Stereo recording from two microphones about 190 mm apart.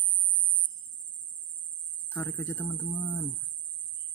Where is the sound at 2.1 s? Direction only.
10° left (ahead or behind).